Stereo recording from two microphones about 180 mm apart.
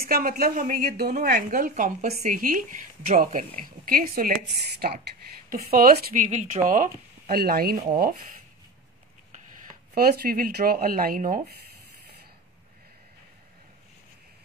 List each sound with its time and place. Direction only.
0.0 s a woman's voice: 55° right (ahead or behind)
5.5 s speech: 55° right (ahead or behind)
6.2 s a woman's voice: 40° right (ahead or behind); by 7.7 s 55° right (ahead or behind)
7.7 s speech: 40° right (ahead or behind)
8.0 s a woman's voice: 55° right (ahead or behind)
9.9 s speech: 55° right (ahead or behind)